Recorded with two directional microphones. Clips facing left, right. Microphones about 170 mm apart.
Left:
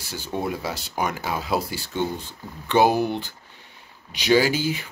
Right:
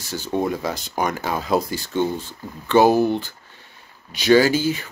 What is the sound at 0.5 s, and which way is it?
Speech, 5° left (ahead or behind).